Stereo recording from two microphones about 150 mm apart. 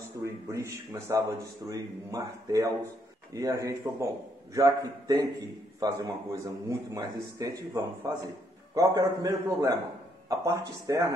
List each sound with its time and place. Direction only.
0.2 s a man's voice: 20° right (ahead or behind)